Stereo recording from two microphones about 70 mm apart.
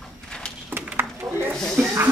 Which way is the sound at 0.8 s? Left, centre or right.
Right.